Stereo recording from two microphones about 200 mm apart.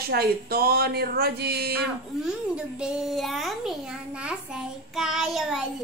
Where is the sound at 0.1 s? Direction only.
50° right (ahead or behind).